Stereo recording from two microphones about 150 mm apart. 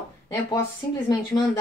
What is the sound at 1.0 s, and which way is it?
Speech, 30° left (ahead or behind).